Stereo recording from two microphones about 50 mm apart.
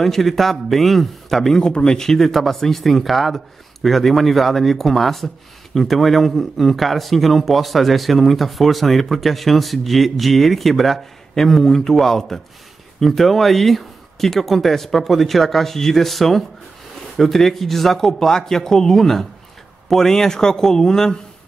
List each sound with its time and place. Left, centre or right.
0.0 s speech: centre
1.6 s a man's voice: centre